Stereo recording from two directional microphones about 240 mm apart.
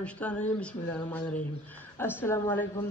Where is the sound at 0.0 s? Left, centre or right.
Centre.